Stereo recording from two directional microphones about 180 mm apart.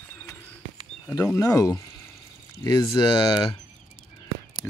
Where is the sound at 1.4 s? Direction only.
20° left (ahead or behind).